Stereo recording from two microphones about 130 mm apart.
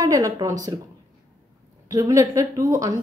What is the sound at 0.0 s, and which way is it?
Speech, 25° right (ahead or behind).